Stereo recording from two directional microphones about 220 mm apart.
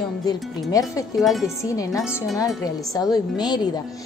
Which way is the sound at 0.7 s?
15° left (ahead or behind).